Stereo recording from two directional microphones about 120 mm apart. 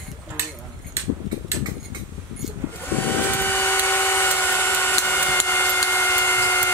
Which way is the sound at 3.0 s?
15° left (ahead or behind).